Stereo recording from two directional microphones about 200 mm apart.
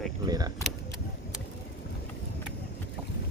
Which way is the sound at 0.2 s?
20° right (ahead or behind).